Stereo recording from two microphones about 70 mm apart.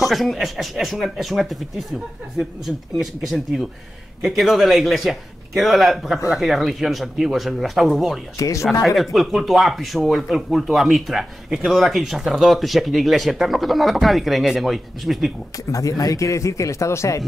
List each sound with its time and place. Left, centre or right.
0.0 s speech: centre
8.4 s a man's voice: left
8.8 s speech: centre
15.7 s a man's voice: left